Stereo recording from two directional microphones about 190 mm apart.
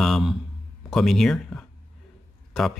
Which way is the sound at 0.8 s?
Centre (ahead or behind).